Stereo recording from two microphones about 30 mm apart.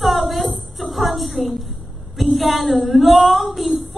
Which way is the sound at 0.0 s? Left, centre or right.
Centre.